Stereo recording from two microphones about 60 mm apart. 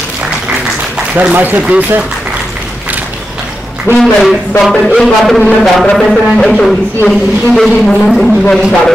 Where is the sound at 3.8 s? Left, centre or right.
Centre.